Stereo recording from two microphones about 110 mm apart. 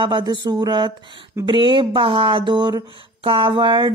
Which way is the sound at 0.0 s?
45° right (ahead or behind).